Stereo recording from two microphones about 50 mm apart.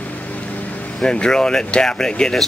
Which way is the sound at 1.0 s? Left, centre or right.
Centre.